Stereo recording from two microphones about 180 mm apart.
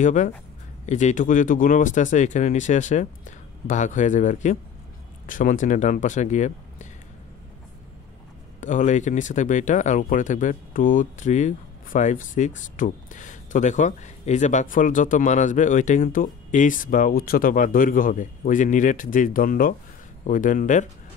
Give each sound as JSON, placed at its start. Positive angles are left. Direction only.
{"t": 0.0, "sound": "speech", "side_deg": 45}
{"t": 8.5, "sound": "speech", "side_deg": 45}